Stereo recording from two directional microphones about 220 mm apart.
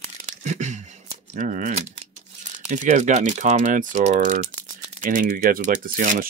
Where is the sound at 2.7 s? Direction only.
30° right (ahead or behind).